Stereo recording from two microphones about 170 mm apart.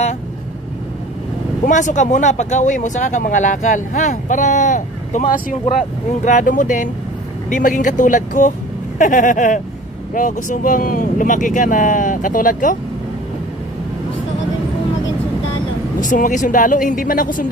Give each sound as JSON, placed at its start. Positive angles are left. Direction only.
{"t": 1.7, "sound": "speech", "side_deg": 45}
{"t": 6.2, "sound": "speech", "side_deg": 50}
{"t": 16.0, "sound": "speech", "side_deg": 50}